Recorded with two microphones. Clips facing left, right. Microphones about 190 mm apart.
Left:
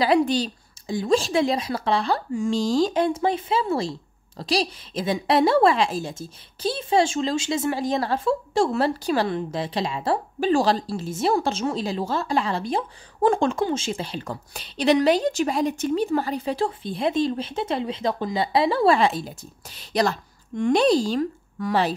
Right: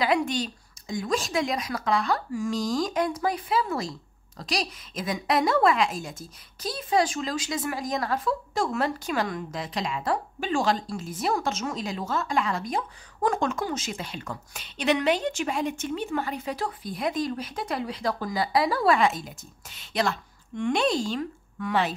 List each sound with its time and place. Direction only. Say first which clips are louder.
0.0 s a woman's voice: left 5 dB; 35° left (ahead or behind)